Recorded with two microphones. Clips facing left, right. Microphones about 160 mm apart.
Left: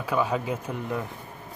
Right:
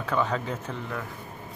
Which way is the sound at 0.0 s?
10° left (ahead or behind).